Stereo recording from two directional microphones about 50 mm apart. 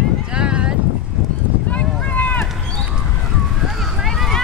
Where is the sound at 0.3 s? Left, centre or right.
Centre.